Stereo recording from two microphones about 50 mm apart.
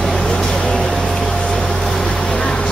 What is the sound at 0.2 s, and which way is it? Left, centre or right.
Vehicle, centre.